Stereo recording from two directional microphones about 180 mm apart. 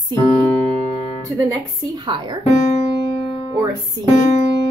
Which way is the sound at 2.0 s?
25° right (ahead or behind).